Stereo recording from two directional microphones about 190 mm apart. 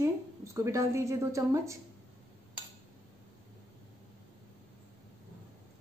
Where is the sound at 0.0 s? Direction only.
15° right (ahead or behind).